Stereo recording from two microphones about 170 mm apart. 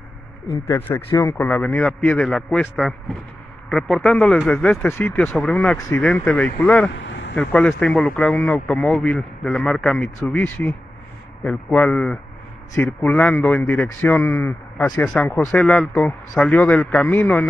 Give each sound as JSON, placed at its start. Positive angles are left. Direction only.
{"t": 0.7, "sound": "speech", "side_deg": 10}
{"t": 1.5, "sound": "a man's voice", "side_deg": 5}
{"t": 7.0, "sound": "a sound", "side_deg": 90}
{"t": 7.3, "sound": "speech", "side_deg": 5}